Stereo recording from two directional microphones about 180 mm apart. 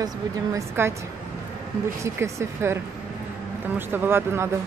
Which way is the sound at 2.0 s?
15° right (ahead or behind).